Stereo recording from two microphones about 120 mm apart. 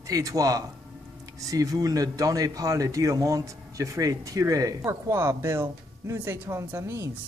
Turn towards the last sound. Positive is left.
turn(degrees=-25)  # may be behind; listen again after turning